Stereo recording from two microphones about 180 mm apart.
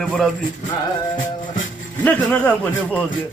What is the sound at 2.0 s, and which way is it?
Speech, 10° left (ahead or behind).